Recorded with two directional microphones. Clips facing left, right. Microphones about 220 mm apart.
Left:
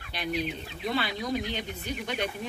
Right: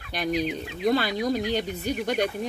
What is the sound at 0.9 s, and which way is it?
Speech, 40° right (ahead or behind).